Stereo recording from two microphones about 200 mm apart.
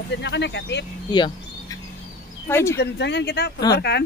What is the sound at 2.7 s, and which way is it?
Speech, 60° left (ahead or behind).